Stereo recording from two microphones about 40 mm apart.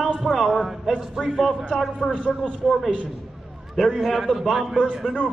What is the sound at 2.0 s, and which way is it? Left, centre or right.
Speech, left.